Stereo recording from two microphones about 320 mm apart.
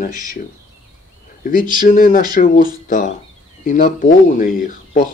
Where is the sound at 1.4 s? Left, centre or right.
Left.